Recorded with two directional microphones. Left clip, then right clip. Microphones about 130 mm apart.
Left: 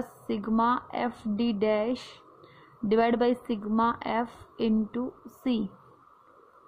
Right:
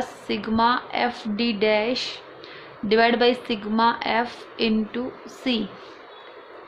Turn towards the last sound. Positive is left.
turn(degrees=70)  # may be behind; listen again after turning